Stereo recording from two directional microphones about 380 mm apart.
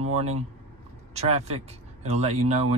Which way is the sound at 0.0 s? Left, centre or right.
Centre.